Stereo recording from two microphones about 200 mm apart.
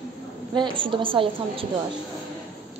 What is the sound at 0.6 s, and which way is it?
Speech, 25° right (ahead or behind).